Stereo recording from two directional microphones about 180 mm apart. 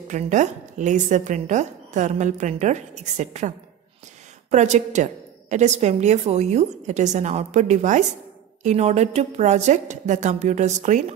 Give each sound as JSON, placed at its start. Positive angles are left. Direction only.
{"t": 0.1, "sound": "a woman's voice", "side_deg": -40}